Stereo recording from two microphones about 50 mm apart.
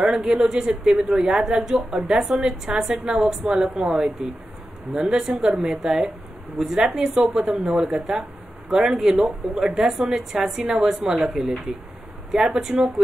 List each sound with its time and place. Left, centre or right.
0.0 s speech: centre
12.3 s speech: centre